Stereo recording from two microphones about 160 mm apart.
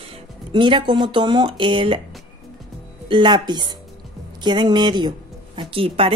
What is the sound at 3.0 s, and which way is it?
Speech, 30° right (ahead or behind).